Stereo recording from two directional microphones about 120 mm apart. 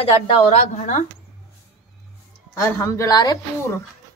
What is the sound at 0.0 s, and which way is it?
A woman's voice, 55° left (ahead or behind).